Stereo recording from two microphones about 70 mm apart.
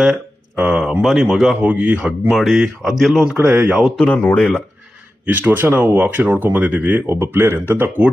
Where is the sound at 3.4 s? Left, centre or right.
Right.